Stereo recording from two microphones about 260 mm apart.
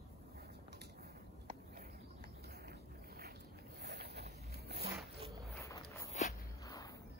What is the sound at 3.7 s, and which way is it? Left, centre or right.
Zipper, right.